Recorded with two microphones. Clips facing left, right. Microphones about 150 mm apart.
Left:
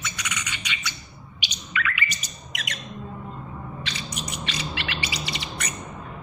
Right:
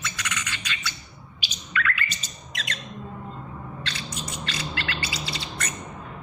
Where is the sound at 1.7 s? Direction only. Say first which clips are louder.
Right 1 dB; 15° left (ahead or behind).